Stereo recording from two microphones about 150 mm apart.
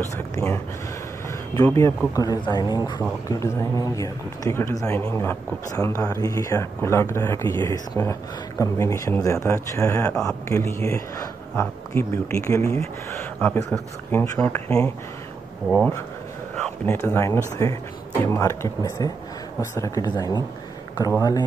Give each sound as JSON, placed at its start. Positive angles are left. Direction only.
{"t": 1.5, "sound": "speech", "side_deg": 15}
{"t": 14.4, "sound": "speech", "side_deg": 10}
{"t": 16.8, "sound": "speech", "side_deg": 15}